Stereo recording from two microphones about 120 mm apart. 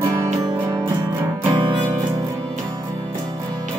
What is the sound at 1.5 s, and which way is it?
Music, 40° right (ahead or behind).